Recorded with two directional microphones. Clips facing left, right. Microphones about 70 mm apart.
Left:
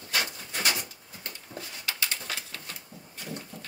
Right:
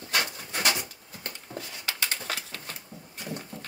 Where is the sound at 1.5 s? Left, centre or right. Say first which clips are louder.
Right 1 dB; right.